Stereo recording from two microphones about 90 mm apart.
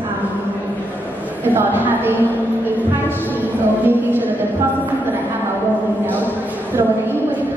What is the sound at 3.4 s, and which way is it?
Speech, 20° right (ahead or behind).